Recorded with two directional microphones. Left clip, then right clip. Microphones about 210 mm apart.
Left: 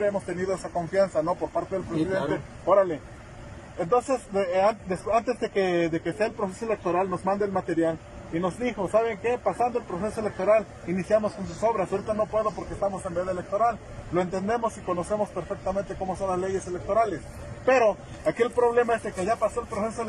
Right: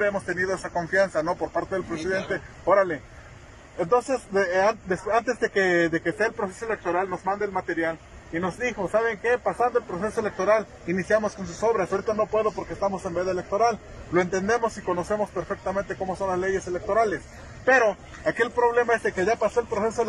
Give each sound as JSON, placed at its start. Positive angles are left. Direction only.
{"t": 0.3, "sound": "a man's voice", "side_deg": 10}
{"t": 1.5, "sound": "speech", "side_deg": -10}
{"t": 2.3, "sound": "a man's voice", "side_deg": 0}
{"t": 6.4, "sound": "a man's voice", "side_deg": 20}
{"t": 9.5, "sound": "a man's voice", "side_deg": 0}
{"t": 18.8, "sound": "a man's voice", "side_deg": 0}